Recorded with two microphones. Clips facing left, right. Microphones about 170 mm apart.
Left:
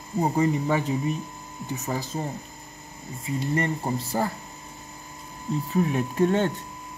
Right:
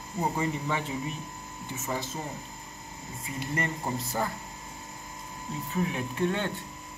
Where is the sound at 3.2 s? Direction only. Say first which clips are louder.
Left 7 dB; 30° left (ahead or behind).